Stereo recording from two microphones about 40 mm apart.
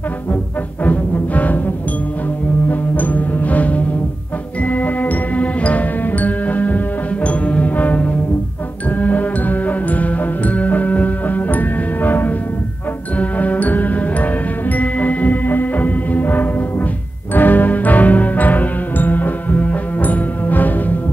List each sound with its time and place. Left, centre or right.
0.8 s music: left
2.7 s music: left